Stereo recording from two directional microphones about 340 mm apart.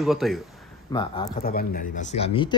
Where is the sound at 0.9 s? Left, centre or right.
Centre.